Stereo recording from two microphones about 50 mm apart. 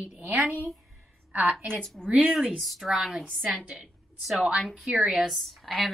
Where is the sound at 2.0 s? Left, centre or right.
Right.